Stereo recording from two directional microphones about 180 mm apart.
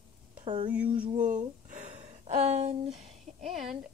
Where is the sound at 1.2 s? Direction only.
45° right (ahead or behind).